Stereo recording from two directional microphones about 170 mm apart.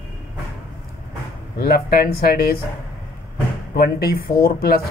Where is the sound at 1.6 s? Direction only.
60° left (ahead or behind).